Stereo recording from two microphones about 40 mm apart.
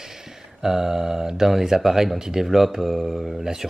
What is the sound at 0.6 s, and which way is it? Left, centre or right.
Speech, centre.